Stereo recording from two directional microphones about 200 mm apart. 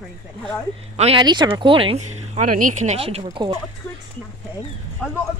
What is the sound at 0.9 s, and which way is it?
Speech, 30° right (ahead or behind).